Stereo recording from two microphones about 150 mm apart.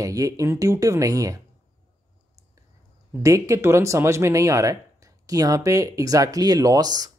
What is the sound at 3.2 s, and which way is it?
Speech, 20° right (ahead or behind).